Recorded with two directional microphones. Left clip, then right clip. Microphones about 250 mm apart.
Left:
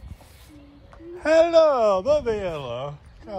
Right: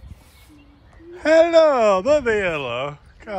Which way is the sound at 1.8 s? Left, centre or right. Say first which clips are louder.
Right 3 dB; right.